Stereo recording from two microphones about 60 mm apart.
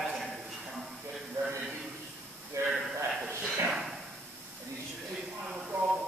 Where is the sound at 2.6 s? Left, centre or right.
Right.